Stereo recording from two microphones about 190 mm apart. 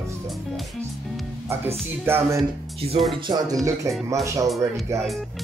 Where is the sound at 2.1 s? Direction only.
15° right (ahead or behind).